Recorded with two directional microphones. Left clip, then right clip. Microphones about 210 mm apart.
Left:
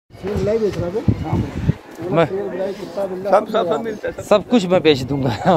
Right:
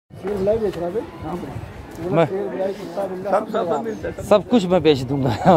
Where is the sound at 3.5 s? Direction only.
15° left (ahead or behind).